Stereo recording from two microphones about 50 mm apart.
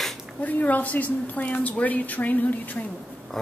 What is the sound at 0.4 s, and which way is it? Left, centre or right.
A woman's voice, left.